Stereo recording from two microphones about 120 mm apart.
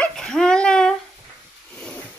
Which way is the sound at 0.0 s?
5° left (ahead or behind).